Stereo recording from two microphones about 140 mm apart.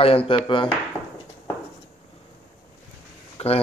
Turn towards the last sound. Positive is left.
turn(degrees=45)  # may be behind; listen again after turning